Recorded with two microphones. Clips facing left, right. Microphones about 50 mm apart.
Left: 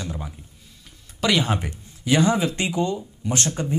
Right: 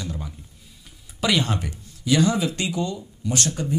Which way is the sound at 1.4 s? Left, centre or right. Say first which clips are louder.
Left 2 dB; left.